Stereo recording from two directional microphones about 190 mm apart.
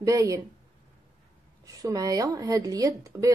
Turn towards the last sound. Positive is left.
turn(degrees=-20)  # may be behind; listen again after turning